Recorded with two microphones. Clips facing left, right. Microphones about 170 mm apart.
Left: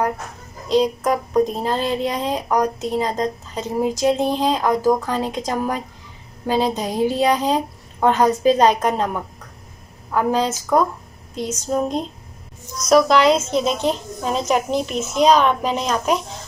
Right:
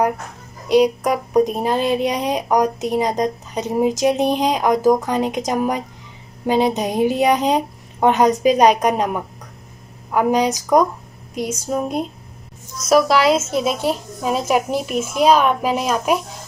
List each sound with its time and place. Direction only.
0.7 s speech: 15° right (ahead or behind)